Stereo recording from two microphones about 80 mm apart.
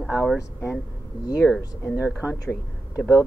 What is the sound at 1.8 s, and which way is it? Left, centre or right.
Speech, left.